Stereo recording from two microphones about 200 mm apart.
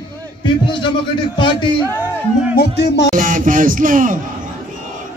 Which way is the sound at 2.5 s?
55° left (ahead or behind).